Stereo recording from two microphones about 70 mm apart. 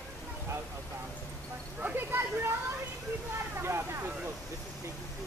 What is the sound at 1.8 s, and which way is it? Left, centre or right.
Speech, right.